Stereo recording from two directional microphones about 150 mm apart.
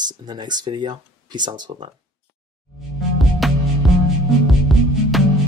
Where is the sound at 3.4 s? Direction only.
Centre (ahead or behind).